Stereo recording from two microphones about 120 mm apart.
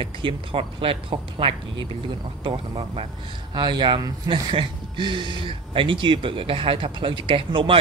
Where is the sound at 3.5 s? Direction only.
40° right (ahead or behind).